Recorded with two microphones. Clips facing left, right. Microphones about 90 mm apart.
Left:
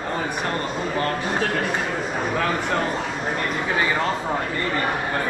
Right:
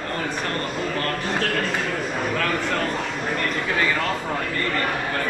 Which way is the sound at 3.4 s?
15° left (ahead or behind).